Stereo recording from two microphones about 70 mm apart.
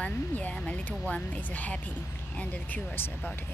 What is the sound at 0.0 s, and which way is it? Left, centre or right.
Speech, centre.